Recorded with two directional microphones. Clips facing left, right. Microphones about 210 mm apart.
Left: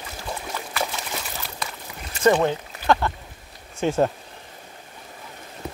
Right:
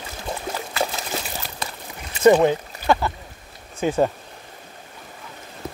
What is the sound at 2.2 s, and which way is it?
Speech, 10° right (ahead or behind).